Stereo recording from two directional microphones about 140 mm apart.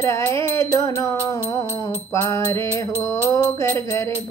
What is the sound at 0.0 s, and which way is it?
Music, 20° left (ahead or behind).